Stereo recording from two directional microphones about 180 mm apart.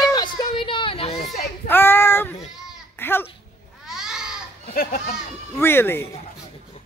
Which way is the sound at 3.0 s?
10° left (ahead or behind).